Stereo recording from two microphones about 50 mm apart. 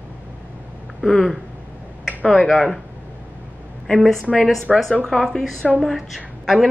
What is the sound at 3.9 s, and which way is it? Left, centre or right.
A woman's voice, centre.